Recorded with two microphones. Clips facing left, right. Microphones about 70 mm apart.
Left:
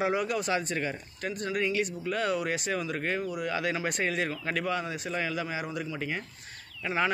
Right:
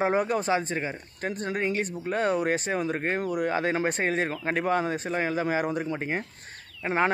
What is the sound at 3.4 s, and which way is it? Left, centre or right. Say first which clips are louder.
Speech: right 4 dB; right.